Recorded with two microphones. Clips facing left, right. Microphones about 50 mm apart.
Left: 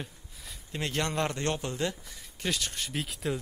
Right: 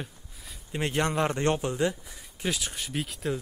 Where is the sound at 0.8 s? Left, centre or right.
Right.